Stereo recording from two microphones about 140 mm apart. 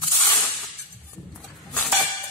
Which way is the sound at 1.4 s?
5° left (ahead or behind).